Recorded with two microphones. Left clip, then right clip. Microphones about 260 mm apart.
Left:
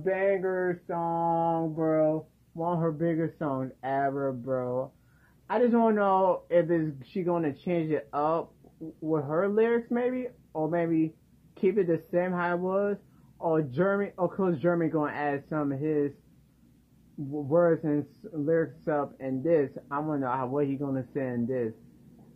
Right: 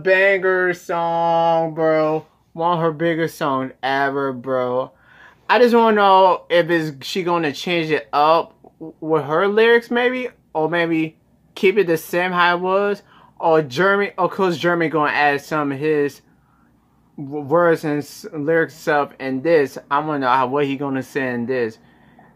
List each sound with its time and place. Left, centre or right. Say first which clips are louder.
0.0 s a sound: right 12 dB; right
2.5 s speech: right 11 dB; right
17.5 s speech: right 8 dB; right